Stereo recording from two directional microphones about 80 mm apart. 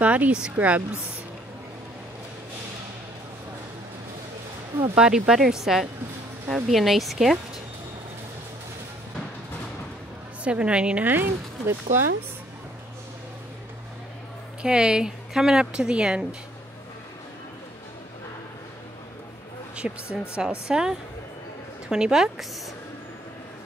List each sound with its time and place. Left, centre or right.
0.0 s a woman's voice: centre
4.9 s a woman's voice: centre
10.4 s a woman's voice: centre; by 12.0 s right
14.6 s a woman's voice: centre
19.7 s a woman's voice: centre